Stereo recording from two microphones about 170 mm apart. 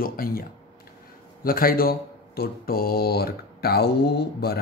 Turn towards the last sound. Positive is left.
turn(degrees=70)  # may be behind; listen again after turning